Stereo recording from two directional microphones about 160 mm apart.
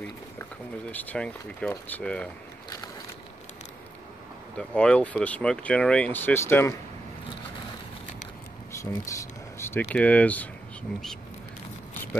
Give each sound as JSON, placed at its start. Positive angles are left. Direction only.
{"t": 0.9, "sound": "speech", "side_deg": 10}
{"t": 4.6, "sound": "speech", "side_deg": 5}
{"t": 8.7, "sound": "speech", "side_deg": 20}